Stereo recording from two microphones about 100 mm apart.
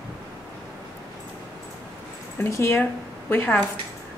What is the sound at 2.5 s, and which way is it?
A woman's voice, 25° left (ahead or behind).